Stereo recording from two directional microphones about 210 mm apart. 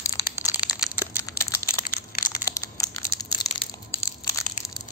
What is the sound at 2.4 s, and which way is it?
Crushing, 15° left (ahead or behind).